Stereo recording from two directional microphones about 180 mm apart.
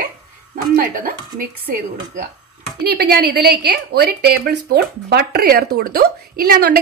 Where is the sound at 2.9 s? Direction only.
65° right (ahead or behind).